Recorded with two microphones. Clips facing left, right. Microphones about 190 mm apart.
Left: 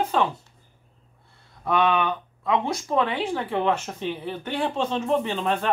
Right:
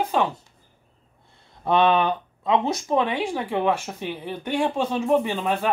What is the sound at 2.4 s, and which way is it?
Speech, 20° right (ahead or behind).